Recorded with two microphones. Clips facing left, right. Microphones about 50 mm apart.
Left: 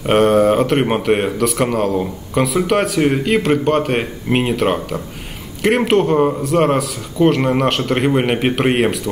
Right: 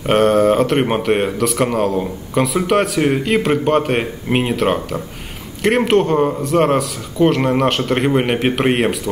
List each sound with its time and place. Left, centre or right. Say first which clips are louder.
0.0 s speech: left 1 dB; centre